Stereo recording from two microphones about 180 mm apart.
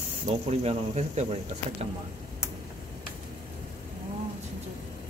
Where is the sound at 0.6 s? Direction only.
35° right (ahead or behind).